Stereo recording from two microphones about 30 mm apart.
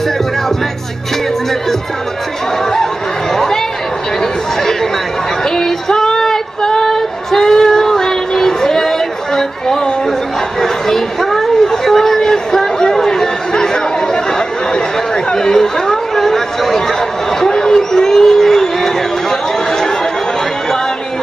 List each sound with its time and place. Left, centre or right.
2.6 s chatter: centre
5.4 s child singing: centre
10.6 s a sound: centre
11.8 s chatter: centre
14.7 s chatter: left
17.5 s a sound: left
19.7 s chatter: centre